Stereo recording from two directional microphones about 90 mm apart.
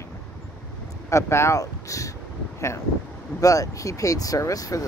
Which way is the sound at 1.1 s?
30° left (ahead or behind).